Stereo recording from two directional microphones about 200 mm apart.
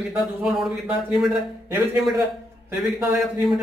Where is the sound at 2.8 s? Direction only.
Centre (ahead or behind).